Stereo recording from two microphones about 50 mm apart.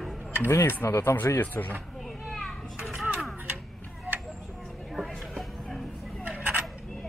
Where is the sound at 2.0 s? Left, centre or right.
Centre.